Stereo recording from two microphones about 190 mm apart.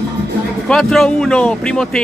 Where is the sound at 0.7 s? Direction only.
Centre (ahead or behind).